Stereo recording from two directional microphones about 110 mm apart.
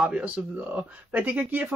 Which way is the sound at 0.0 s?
10° right (ahead or behind).